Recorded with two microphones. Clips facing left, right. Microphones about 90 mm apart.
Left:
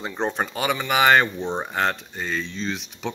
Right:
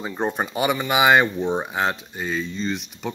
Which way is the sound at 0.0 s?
10° right (ahead or behind).